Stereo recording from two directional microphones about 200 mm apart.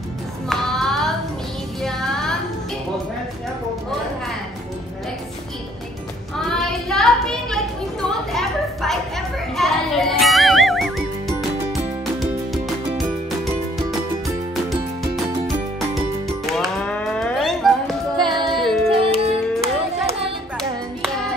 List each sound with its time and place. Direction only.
0.5 s a sound: centre (ahead or behind)
1.8 s music: centre (ahead or behind)
6.9 s a sound: centre (ahead or behind)
12.2 s music: centre (ahead or behind)
15.4 s music: centre (ahead or behind)
18.1 s music: 25° right (ahead or behind)
18.6 s music: centre (ahead or behind)
18.9 s music: 30° right (ahead or behind)